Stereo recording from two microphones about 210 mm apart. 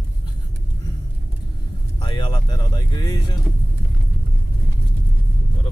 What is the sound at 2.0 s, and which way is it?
Speech, 20° left (ahead or behind).